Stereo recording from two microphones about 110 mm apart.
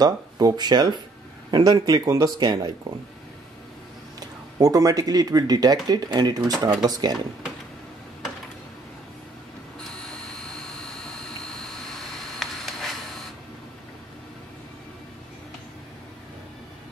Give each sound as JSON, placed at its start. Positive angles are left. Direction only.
{"t": 0.0, "sound": "a man's voice", "side_deg": -35}
{"t": 4.2, "sound": "a man's voice", "side_deg": -35}
{"t": 12.4, "sound": "a sound", "side_deg": 0}